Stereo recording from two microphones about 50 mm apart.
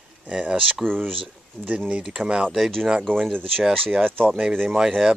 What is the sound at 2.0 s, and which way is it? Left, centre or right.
Speech, centre.